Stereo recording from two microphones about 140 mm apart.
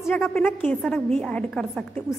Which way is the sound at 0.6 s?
10° left (ahead or behind).